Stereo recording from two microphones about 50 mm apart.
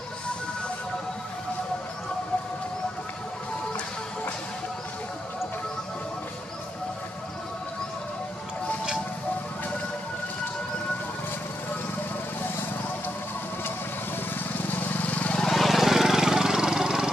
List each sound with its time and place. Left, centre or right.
14.8 s vehicle: left
15.4 s vehicle: centre